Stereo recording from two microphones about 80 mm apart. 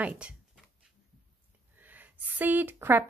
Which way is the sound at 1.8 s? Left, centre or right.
Right.